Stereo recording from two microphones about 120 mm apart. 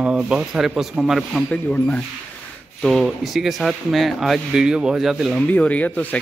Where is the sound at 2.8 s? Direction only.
Centre (ahead or behind).